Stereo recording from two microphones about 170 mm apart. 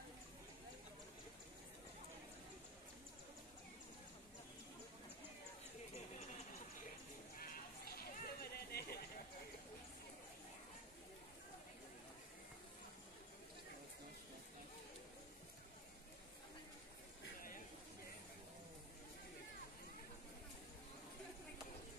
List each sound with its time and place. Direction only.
7.3 s sheep: 60° left (ahead or behind)